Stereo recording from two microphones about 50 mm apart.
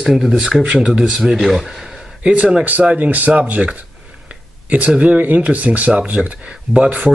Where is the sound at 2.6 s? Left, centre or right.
Right.